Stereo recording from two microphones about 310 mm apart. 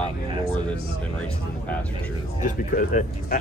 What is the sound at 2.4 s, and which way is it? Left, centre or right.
Speech, left.